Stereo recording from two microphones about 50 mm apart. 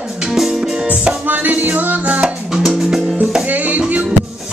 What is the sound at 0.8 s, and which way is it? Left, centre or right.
Music, right.